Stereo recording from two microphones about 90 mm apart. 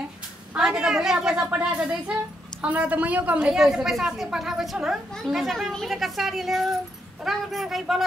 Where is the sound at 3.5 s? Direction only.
5° right (ahead or behind).